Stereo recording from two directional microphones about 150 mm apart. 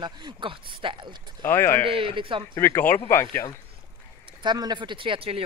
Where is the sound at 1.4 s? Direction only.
15° left (ahead or behind).